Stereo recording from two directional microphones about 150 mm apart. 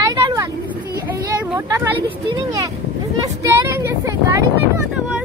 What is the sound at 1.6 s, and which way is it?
Speech, 20° right (ahead or behind).